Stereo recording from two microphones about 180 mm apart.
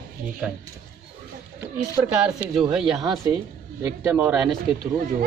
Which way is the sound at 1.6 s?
10° right (ahead or behind).